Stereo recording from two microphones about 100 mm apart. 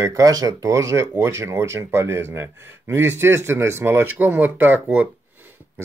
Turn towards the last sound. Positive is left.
turn(degrees=-20)  # may be behind; listen again after turning